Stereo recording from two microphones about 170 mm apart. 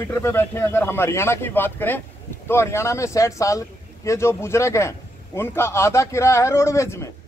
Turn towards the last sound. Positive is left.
turn(degrees=15)  # may be behind; listen again after turning